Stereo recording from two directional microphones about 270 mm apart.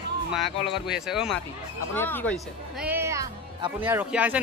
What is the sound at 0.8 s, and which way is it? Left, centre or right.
Speech, centre.